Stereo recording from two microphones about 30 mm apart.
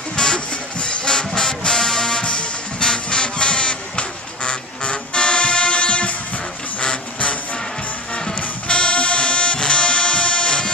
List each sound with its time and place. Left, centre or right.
0.1 s music: left
0.5 s music: left
8.4 s music: left